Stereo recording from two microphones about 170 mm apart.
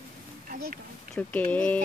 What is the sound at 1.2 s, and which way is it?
Speech, 10° left (ahead or behind).